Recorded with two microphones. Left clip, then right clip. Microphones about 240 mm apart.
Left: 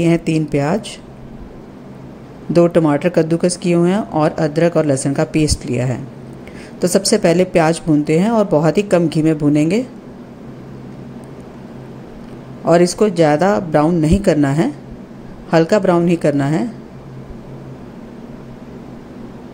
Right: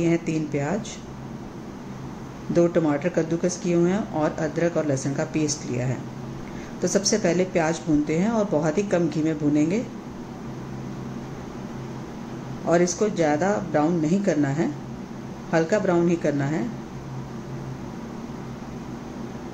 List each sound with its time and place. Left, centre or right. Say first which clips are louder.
0.0 s speech: left 8 dB; left
2.5 s speech: left 8 dB; left
12.6 s speech: left 9 dB; left